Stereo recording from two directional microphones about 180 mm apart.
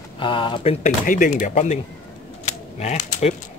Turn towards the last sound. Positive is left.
turn(degrees=40)  # may be behind; listen again after turning